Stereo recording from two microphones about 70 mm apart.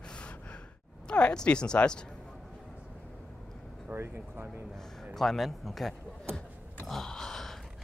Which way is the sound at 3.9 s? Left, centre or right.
Right.